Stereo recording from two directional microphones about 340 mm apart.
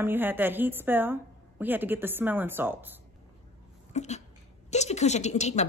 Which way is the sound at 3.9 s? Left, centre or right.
Centre.